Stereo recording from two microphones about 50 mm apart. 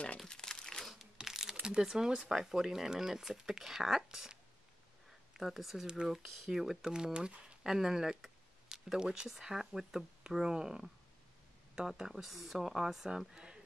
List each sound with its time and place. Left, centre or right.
0.3 s crumpling: centre
1.1 s speech: centre
9.3 s speech: centre